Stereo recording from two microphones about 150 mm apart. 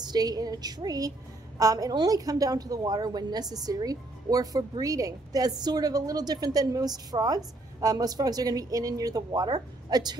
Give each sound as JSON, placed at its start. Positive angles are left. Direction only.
{"t": 0.0, "sound": "a woman's voice", "side_deg": -25}